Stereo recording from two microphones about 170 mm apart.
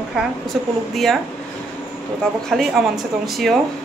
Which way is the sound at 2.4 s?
Centre (ahead or behind).